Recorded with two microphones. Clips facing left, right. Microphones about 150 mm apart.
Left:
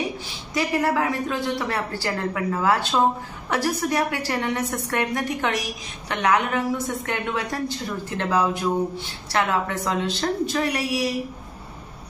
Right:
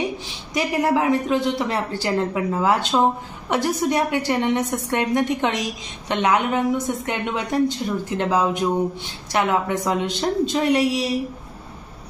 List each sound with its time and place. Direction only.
0.6 s a woman's voice: 20° right (ahead or behind)